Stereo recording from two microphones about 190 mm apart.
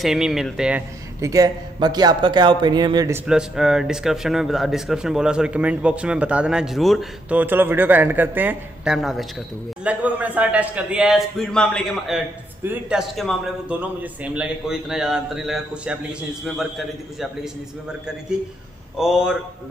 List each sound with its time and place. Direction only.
0.0 s speech: centre (ahead or behind)
1.2 s a man's voice: 20° right (ahead or behind)
3.3 s speech: 5° right (ahead or behind)
18.9 s speech: 5° right (ahead or behind)